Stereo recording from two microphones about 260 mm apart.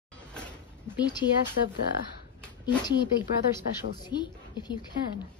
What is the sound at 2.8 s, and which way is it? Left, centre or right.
Speech, centre.